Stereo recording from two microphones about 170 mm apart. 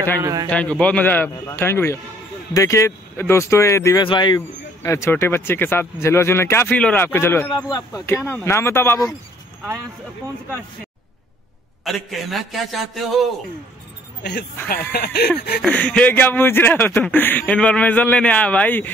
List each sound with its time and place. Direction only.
0.2 s a man's voice: 20° right (ahead or behind)
0.5 s speech: 5° left (ahead or behind); by 4.4 s 25° left (ahead or behind)
4.8 s speech: 15° left (ahead or behind)
11.8 s a man's voice: centre (ahead or behind)
14.9 s speech: 70° left (ahead or behind)
15.6 s speech: 5° left (ahead or behind)